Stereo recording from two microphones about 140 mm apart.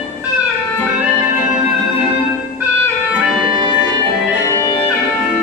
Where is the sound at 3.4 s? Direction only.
35° right (ahead or behind).